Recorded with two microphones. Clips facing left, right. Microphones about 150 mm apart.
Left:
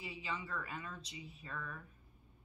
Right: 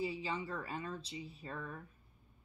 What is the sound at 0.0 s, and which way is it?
A woman's voice, 30° right (ahead or behind).